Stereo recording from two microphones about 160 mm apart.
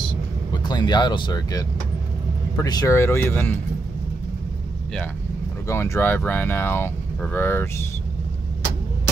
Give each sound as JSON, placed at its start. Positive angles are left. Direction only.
{"t": 0.5, "sound": "speech", "side_deg": 25}
{"t": 5.7, "sound": "speech", "side_deg": 15}